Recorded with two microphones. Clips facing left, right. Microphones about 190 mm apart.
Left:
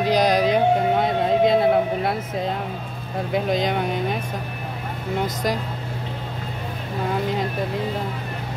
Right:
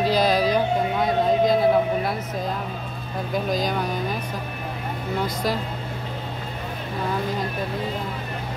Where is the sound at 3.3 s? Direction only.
25° left (ahead or behind).